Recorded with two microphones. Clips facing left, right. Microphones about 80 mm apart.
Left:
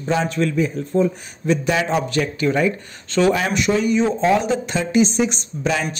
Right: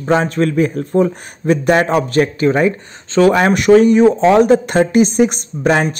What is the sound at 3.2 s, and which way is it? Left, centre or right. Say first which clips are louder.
Speech: right 6 dB; right.